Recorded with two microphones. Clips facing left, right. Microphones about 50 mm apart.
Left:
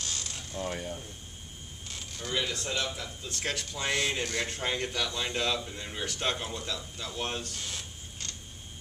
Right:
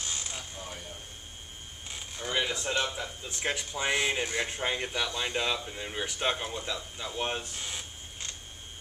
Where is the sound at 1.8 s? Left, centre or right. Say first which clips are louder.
Right 2 dB; centre.